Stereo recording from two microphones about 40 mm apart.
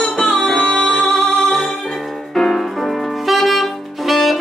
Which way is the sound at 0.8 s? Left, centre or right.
Left.